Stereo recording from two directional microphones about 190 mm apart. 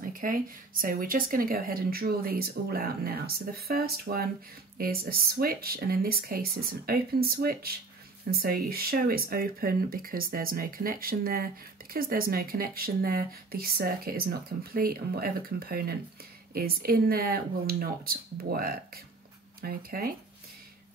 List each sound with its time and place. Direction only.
0.0 s speech: 45° right (ahead or behind)